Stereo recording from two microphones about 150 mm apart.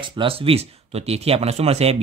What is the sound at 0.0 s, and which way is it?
Speech, 35° right (ahead or behind).